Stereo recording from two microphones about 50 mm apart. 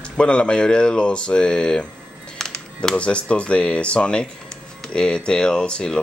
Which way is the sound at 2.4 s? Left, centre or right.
Centre.